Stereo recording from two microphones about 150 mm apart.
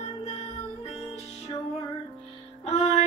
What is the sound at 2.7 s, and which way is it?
Music, 40° left (ahead or behind).